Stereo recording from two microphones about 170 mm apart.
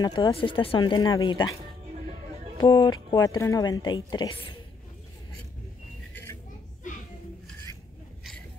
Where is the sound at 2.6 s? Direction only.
25° left (ahead or behind).